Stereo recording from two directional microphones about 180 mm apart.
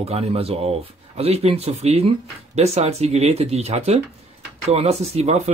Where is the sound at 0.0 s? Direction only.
35° right (ahead or behind).